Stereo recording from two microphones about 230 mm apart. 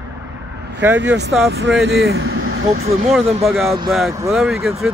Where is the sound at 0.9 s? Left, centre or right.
Right.